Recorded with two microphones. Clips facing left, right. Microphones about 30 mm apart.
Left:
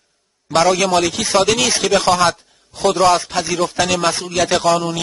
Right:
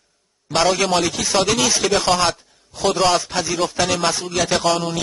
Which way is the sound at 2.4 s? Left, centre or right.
Centre.